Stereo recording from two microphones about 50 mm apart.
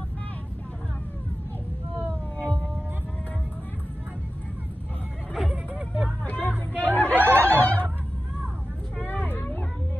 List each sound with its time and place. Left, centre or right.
2.3 s a sound: left
5.3 s hubbub: centre
6.2 s hubbub: left
6.9 s snicker: left
7.2 s snicker: right
7.4 s music: left
8.9 s vehicle: left